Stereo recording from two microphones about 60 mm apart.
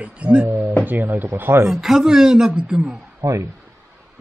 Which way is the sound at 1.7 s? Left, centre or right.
Centre.